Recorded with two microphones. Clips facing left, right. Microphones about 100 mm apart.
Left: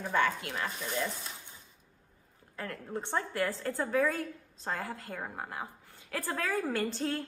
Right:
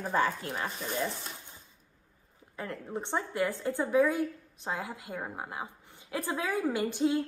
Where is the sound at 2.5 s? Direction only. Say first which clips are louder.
Right 1 dB; 20° right (ahead or behind).